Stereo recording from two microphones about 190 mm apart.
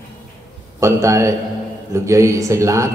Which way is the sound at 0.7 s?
15° right (ahead or behind).